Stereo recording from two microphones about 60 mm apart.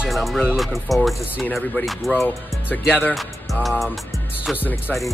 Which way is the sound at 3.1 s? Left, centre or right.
Centre.